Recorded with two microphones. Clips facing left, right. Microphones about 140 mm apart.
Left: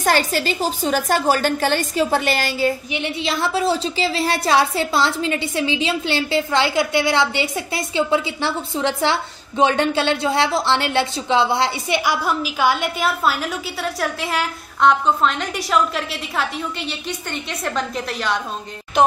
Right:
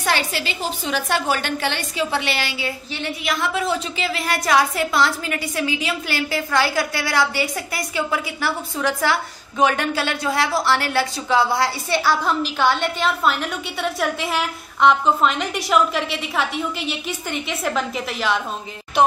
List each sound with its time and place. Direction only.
0.0 s a woman's voice: 45° left (ahead or behind)
2.9 s a woman's voice: 25° left (ahead or behind); by 19.1 s centre (ahead or behind)